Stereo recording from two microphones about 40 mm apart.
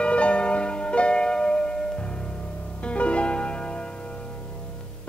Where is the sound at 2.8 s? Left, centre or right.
Left.